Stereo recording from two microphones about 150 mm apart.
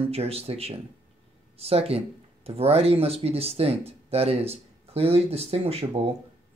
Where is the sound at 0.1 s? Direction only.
45° right (ahead or behind).